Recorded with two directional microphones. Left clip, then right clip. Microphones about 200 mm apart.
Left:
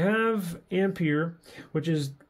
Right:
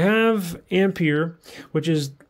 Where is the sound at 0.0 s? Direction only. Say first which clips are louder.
Right 6 dB; 35° right (ahead or behind).